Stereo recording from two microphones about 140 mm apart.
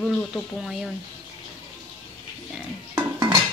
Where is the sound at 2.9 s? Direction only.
30° right (ahead or behind).